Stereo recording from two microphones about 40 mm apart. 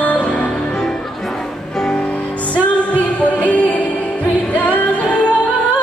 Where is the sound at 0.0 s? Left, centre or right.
Left.